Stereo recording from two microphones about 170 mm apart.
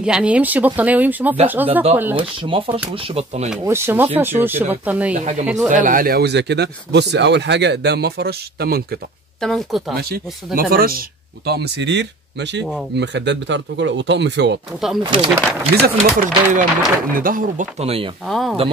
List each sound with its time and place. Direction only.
0.0 s speech: 5° right (ahead or behind)
2.1 s speech: 30° right (ahead or behind)
3.6 s speech: 15° right (ahead or behind)
5.1 s speech: 45° right (ahead or behind); by 9.0 s 65° right (ahead or behind)
9.4 s speech: centre (ahead or behind)
9.9 s speech: 65° right (ahead or behind); by 14.6 s 90° right
15.0 s speech: 25° right (ahead or behind)
15.7 s speech: 55° right (ahead or behind)
17.7 s speech: 35° right (ahead or behind)
18.2 s speech: centre (ahead or behind)